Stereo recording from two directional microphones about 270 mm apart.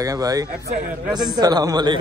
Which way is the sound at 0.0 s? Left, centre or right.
Centre.